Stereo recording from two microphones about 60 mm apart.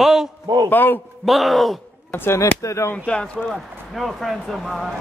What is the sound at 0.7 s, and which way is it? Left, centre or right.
Speech, left.